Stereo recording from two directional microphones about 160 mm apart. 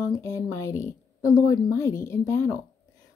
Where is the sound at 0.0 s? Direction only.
20° left (ahead or behind).